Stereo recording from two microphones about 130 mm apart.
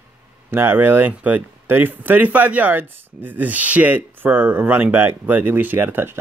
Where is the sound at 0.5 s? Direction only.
15° right (ahead or behind).